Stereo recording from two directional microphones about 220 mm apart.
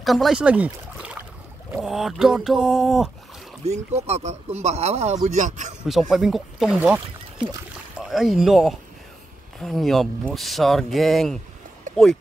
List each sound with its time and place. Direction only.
0.0 s speech: centre (ahead or behind)
3.6 s speech: 30° right (ahead or behind)
5.9 s speech: centre (ahead or behind)
8.0 s speech: centre (ahead or behind)